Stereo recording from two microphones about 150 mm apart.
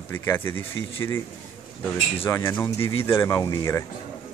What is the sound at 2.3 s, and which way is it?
A man's voice, 15° left (ahead or behind).